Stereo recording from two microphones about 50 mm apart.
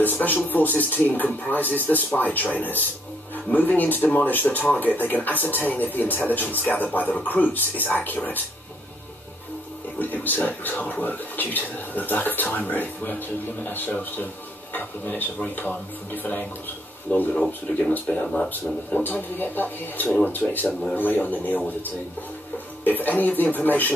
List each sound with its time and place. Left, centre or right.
0.0 s speech: left
9.9 s speech: left
18.2 s speech: centre
18.5 s speech: left
22.8 s speech: left